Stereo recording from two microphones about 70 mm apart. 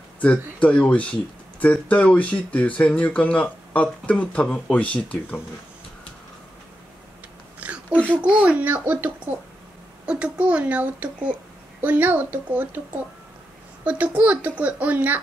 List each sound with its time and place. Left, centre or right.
0.2 s speech: centre
7.9 s a sound: centre
8.2 s a woman's voice: centre
10.0 s a woman's voice: centre